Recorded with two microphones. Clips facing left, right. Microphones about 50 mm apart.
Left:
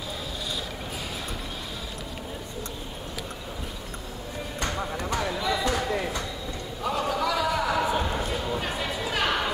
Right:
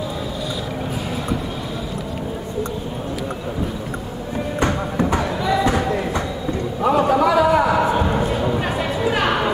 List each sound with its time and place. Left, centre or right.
4.6 s music: right
5.2 s basketball bounce: centre
5.7 s a sound: right